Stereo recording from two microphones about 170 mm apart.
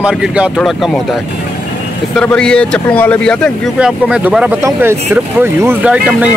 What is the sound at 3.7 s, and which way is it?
Speech, 5° right (ahead or behind).